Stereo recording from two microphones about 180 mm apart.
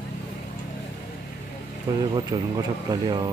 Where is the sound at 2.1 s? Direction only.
20° right (ahead or behind).